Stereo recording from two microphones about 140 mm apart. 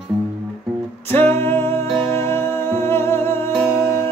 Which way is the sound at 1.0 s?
15° left (ahead or behind).